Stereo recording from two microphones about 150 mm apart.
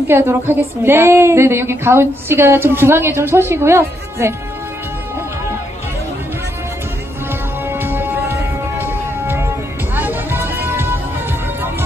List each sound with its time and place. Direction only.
0.1 s a woman's voice: 15° right (ahead or behind)
7.6 s music: 15° right (ahead or behind)